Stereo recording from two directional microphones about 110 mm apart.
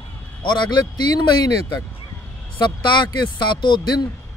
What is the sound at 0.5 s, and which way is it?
Speech, 40° left (ahead or behind).